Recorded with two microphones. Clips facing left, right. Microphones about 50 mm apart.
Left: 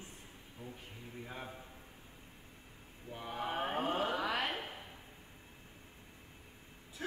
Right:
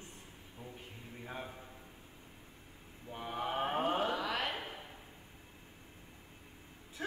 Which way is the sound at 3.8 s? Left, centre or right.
Centre.